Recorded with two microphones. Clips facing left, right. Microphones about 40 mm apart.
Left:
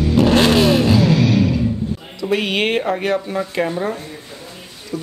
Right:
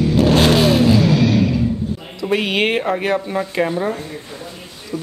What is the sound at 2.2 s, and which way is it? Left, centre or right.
Speech, centre.